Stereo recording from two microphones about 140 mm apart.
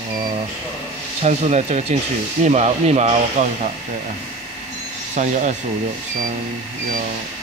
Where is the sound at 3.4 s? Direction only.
65° right (ahead or behind).